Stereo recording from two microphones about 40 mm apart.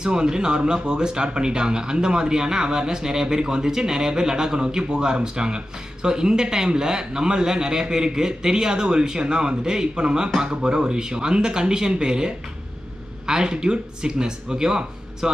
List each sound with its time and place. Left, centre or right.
0.0 s a man's voice: centre